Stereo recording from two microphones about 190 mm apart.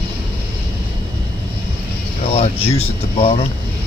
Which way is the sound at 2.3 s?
30° left (ahead or behind).